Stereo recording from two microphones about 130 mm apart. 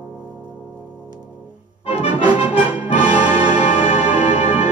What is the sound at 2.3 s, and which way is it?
Music, 50° left (ahead or behind).